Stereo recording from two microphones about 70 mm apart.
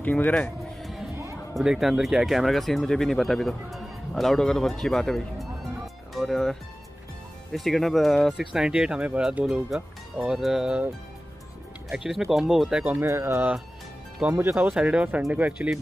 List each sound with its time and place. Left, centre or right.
0.0 s speech: left
1.5 s speech: centre
12.0 s speech: centre
13.0 s speech: right
14.7 s speech: centre